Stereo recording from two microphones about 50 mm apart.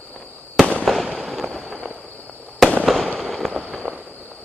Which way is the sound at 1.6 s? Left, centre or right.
Centre.